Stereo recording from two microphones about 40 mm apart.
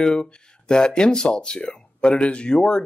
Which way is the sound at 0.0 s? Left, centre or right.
Centre.